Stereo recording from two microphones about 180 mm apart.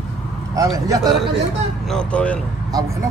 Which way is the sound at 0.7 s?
20° right (ahead or behind).